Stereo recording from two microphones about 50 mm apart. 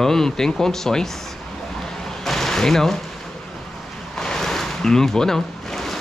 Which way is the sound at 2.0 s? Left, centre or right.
Centre.